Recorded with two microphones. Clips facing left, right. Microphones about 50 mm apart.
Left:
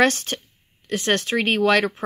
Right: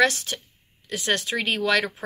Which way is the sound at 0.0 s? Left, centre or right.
Left.